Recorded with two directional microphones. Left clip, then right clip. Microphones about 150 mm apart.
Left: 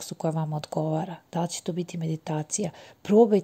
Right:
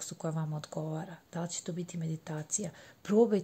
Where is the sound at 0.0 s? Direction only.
30° left (ahead or behind).